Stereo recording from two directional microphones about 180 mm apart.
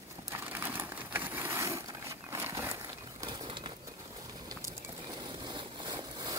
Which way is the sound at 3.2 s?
25° right (ahead or behind).